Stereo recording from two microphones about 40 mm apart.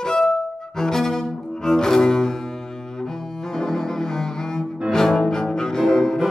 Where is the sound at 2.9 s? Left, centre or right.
Centre.